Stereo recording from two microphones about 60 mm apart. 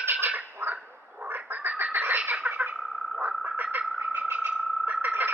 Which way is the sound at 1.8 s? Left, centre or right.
Right.